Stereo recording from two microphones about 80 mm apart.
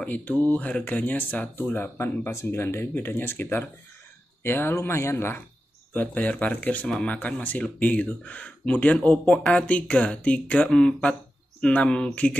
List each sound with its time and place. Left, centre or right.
0.0 s speech: centre
5.9 s speech: centre